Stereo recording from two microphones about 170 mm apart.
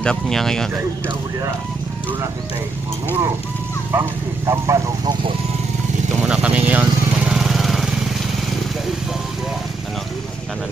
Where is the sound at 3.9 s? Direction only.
15° right (ahead or behind).